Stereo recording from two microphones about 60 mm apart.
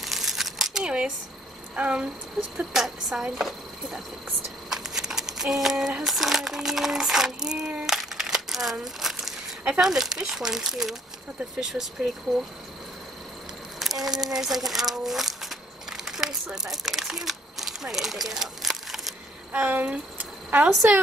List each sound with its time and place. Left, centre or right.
0.0 s crumpling: centre
1.8 s speech: centre
2.4 s speech: centre
7.8 s a sound: centre
8.8 s speech: centre
13.7 s speech: centre
16.1 s crumpling: centre
16.5 s speech: centre
19.5 s speech: right